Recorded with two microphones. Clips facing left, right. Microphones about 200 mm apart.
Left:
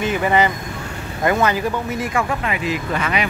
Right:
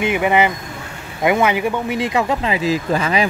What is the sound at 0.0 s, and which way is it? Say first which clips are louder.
Speech: right 2 dB; 15° right (ahead or behind).